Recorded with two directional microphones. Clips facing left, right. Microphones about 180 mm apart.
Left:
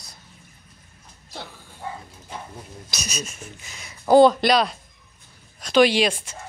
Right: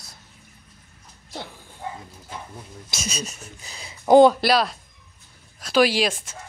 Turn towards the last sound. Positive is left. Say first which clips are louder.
# left 2 dB
turn(degrees=0)  # may be behind; listen again after turning